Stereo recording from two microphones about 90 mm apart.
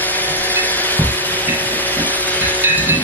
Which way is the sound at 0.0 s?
20° left (ahead or behind).